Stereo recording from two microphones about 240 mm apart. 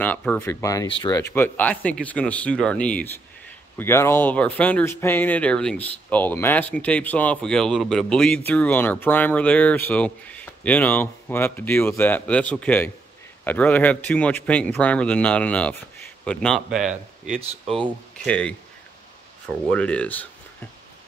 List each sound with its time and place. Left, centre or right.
0.0 s a man's voice: centre
16.9 s speech: right
18.2 s a man's voice: centre